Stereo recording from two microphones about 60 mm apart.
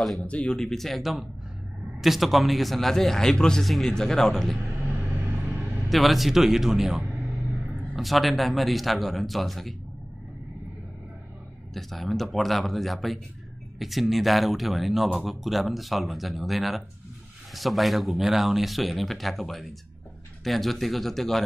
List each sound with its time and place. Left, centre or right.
0.2 s speech: left
0.6 s speech: centre
11.7 s speech: centre